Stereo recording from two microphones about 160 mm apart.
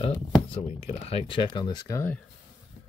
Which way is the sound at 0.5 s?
40° left (ahead or behind).